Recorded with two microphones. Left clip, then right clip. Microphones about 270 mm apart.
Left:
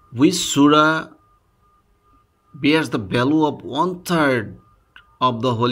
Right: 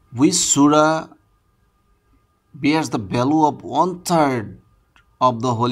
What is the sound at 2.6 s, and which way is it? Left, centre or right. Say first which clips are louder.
Speech: left 1 dB; centre.